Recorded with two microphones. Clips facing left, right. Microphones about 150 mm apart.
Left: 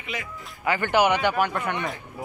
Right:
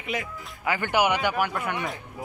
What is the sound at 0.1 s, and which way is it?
Speech, 50° right (ahead or behind).